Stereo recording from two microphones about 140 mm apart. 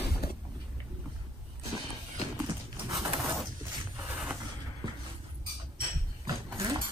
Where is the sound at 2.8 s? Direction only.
25° right (ahead or behind).